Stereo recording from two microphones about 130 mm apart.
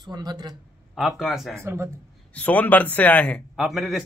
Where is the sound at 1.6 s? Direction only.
20° right (ahead or behind).